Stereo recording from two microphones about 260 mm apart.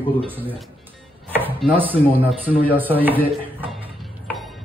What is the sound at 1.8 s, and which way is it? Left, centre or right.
A man's voice, centre.